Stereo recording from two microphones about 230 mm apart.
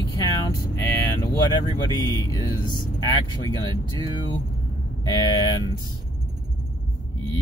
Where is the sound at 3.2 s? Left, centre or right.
Centre.